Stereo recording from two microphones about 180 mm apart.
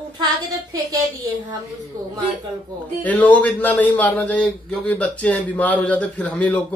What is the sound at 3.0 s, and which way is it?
A man's voice, 10° left (ahead or behind).